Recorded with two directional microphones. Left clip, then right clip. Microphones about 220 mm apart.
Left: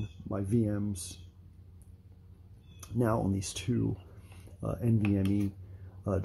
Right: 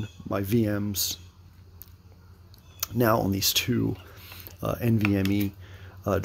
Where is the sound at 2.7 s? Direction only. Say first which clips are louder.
Right 8 dB; 20° right (ahead or behind).